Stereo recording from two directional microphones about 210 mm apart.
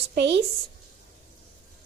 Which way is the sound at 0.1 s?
55° right (ahead or behind).